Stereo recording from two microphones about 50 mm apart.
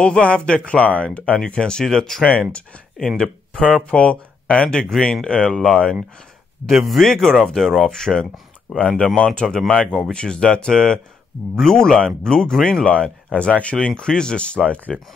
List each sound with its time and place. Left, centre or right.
0.0 s speech: centre
1.3 s speech: centre
2.5 s speech: left
6.8 s speech: centre
8.6 s speech: left; by 12.8 s centre
12.8 s speech: left